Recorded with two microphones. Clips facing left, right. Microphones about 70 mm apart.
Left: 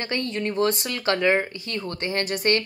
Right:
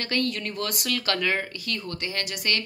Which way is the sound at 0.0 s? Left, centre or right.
Left.